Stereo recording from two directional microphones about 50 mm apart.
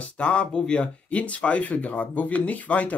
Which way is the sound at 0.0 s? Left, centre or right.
Left.